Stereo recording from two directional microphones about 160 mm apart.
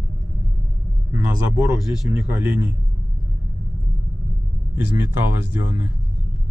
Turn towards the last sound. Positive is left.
turn(degrees=-15)  # may be behind; listen again after turning